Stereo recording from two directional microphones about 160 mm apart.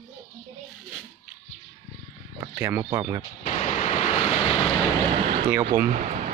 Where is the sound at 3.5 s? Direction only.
45° left (ahead or behind).